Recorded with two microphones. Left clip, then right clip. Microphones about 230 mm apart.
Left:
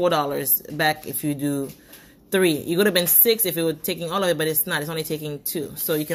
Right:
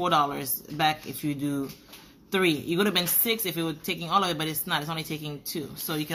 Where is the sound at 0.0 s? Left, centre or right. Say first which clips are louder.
Left 3 dB; centre.